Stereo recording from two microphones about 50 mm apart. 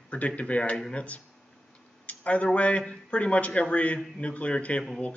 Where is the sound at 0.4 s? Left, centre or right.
Left.